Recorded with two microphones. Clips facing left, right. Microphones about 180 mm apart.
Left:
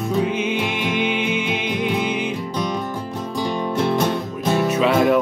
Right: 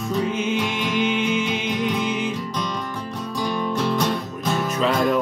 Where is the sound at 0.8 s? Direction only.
55° left (ahead or behind).